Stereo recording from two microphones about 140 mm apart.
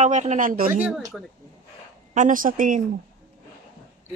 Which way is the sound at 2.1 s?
70° right (ahead or behind).